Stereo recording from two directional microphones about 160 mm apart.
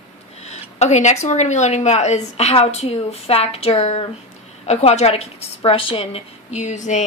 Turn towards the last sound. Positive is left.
turn(degrees=50)  # may be behind; listen again after turning